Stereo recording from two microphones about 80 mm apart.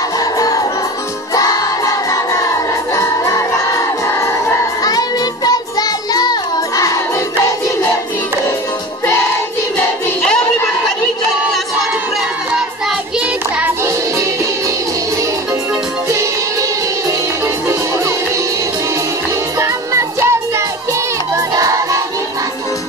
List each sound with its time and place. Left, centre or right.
0.2 s music: left
1.3 s choir: left
2.9 s music: left
4.8 s music: left
13.8 s music: right
19.6 s music: right
21.4 s child singing: right